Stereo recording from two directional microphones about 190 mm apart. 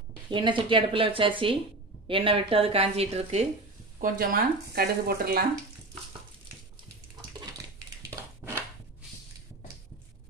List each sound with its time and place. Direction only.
0.3 s a woman's voice: 25° right (ahead or behind)
4.0 s speech: 50° right (ahead or behind)
8.4 s chopping: 10° right (ahead or behind)